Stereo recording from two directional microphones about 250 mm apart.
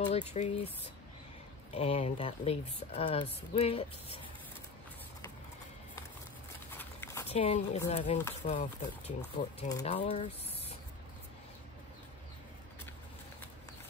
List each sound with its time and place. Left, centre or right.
0.3 s speech: left
1.7 s speech: left
6.8 s dog: centre
7.2 s speech: left